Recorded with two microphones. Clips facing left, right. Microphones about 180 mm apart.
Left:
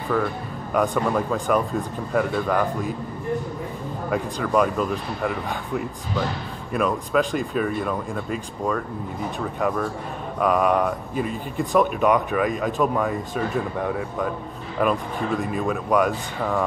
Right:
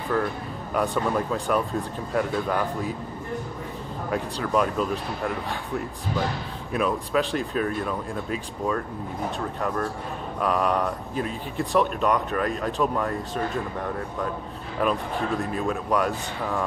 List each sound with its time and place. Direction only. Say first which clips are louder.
0.7 s speech: left 3 dB; centre (ahead or behind)
4.1 s speech: left 2 dB; centre (ahead or behind)
10.4 s speech: left 4 dB; 5° left (ahead or behind)
14.8 s speech: left 2 dB; 5° left (ahead or behind)